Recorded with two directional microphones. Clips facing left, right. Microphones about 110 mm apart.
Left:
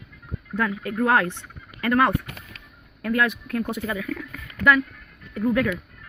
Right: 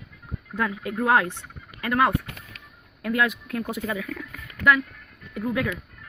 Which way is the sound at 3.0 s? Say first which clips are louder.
Left 1 dB; 20° right (ahead or behind).